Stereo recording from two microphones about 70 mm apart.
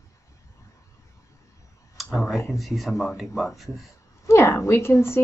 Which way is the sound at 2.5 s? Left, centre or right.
Centre.